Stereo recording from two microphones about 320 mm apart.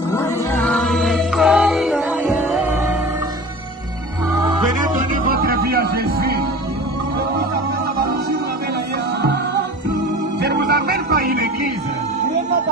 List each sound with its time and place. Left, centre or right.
0.1 s music: centre
4.4 s music: centre
5.1 s music: right
10.4 s music: right